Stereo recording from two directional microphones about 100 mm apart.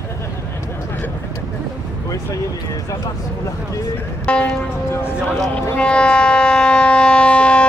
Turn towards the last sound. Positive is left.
turn(degrees=10)  # may be behind; listen again after turning